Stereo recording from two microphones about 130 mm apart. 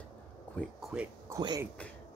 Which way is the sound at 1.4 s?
35° right (ahead or behind).